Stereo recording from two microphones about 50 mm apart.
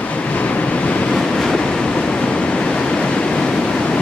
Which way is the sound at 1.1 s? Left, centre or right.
Centre.